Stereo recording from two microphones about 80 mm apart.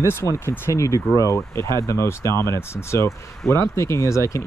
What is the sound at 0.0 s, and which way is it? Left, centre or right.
Speech, left.